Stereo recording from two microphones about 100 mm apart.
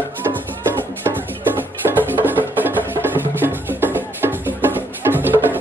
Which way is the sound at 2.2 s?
20° right (ahead or behind).